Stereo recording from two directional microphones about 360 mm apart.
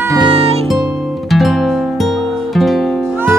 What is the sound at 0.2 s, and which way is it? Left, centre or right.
Music, centre.